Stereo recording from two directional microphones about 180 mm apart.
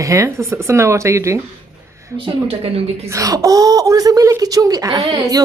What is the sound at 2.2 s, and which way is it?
Speech, 30° right (ahead or behind).